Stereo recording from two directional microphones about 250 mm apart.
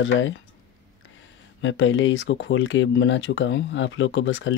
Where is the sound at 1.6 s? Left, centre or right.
Left.